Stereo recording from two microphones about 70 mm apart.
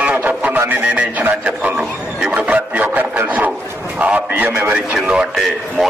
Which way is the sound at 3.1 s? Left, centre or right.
Right.